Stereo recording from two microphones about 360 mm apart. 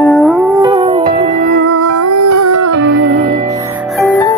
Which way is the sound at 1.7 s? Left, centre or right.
Right.